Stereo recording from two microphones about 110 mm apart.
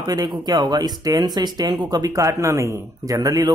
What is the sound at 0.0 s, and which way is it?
Speech, 35° right (ahead or behind).